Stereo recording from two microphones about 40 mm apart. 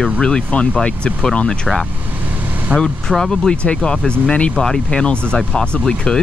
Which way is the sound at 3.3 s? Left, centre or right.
Centre.